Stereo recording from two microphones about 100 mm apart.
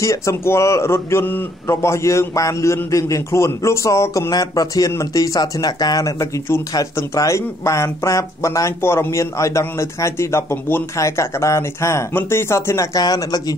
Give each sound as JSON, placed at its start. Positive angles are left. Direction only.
{"t": 0.0, "sound": "a man's voice", "side_deg": 30}
{"t": 4.3, "sound": "speech", "side_deg": 40}